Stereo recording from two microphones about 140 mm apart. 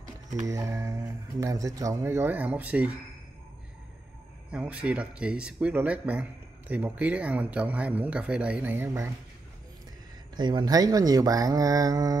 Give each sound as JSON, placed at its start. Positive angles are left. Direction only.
{"t": 0.4, "sound": "speech", "side_deg": -25}
{"t": 4.5, "sound": "speech", "side_deg": -10}
{"t": 10.3, "sound": "speech", "side_deg": -30}